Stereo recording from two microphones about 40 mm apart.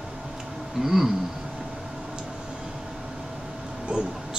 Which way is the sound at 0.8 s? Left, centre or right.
Centre.